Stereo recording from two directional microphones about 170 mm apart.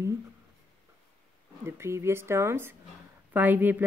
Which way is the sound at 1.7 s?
15° right (ahead or behind).